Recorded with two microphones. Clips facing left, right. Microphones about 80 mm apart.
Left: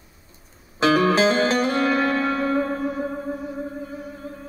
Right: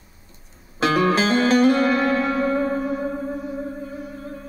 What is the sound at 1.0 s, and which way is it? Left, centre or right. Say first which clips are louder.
Music: even; centre.